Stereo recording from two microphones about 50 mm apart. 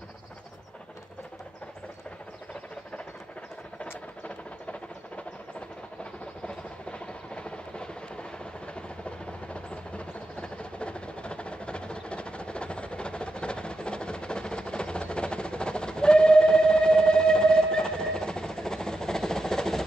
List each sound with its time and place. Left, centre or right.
4.2 s rodents: left
6.4 s vehicle: centre